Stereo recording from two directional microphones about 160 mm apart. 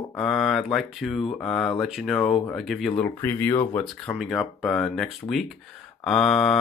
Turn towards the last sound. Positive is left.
turn(degrees=0)  # may be behind; listen again after turning